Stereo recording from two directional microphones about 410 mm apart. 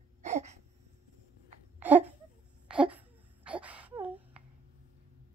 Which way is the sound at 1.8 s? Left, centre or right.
Centre.